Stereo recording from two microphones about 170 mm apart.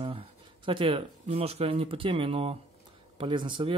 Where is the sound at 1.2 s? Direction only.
35° right (ahead or behind).